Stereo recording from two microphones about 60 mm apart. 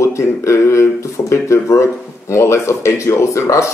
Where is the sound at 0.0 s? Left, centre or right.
Left.